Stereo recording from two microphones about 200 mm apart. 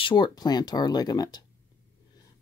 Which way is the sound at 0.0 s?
20° left (ahead or behind).